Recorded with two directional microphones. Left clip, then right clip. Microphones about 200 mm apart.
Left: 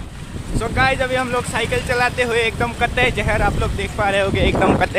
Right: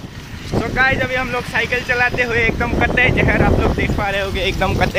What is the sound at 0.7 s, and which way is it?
Speech, 5° left (ahead or behind).